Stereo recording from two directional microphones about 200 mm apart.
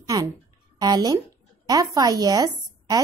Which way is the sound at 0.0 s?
15° right (ahead or behind).